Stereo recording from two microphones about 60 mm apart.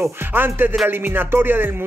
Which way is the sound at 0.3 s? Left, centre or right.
Right.